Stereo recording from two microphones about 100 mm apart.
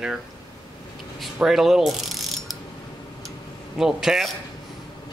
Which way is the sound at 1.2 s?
5° right (ahead or behind).